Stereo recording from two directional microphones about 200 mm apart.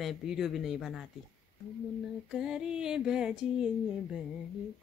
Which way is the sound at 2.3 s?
5° right (ahead or behind).